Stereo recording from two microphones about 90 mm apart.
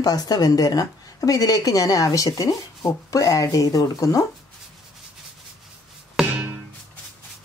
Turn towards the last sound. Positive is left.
turn(degrees=-25)  # may be behind; listen again after turning